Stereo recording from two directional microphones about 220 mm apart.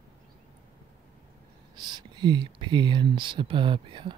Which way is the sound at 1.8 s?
20° right (ahead or behind).